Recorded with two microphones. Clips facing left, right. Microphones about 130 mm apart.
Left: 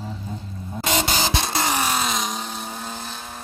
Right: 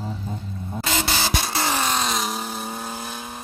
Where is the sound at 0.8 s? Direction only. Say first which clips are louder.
Left 2 dB; 20° left (ahead or behind); by 2.3 s centre (ahead or behind).